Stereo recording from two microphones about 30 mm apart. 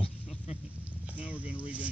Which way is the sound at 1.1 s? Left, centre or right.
Right.